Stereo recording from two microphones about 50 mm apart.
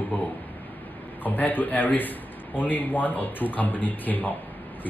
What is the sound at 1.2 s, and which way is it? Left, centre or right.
A man's voice, left.